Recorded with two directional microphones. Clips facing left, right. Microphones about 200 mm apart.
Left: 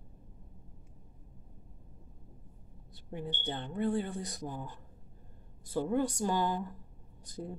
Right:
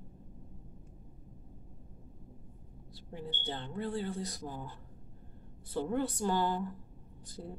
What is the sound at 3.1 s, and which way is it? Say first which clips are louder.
A woman's voice: left 2 dB; 20° left (ahead or behind).